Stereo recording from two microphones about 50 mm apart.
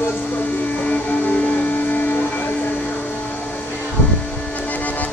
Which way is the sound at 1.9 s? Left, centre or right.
Left.